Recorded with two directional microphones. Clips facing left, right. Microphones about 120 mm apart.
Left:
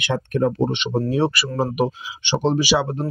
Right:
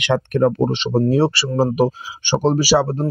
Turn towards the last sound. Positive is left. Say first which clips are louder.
# right 4 dB
turn(degrees=-35)  # may be behind; listen again after turning